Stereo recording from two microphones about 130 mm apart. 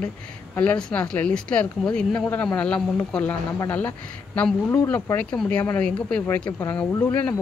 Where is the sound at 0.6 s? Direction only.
10° left (ahead or behind).